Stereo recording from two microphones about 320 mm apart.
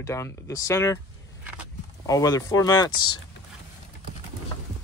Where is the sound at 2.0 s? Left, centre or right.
Centre.